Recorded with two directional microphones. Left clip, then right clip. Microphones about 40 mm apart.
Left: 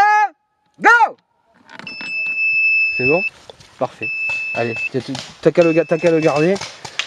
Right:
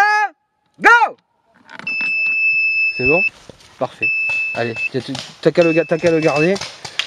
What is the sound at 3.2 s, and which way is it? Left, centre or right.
Speech, centre.